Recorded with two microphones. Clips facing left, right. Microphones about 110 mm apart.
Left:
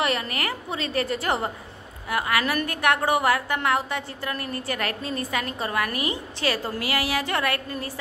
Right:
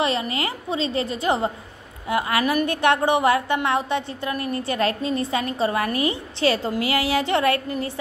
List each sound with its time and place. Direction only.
0.0 s a woman's voice: 25° right (ahead or behind)